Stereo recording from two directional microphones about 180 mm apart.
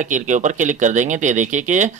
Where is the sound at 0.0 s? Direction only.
45° right (ahead or behind).